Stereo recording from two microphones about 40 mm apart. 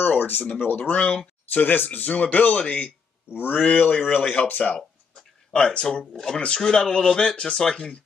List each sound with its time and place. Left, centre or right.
0.0 s speech: left
2.0 s speech: left
4.3 s speech: left
5.5 s speech: left